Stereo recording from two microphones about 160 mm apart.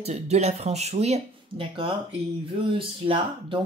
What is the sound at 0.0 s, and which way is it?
Speech, 45° right (ahead or behind).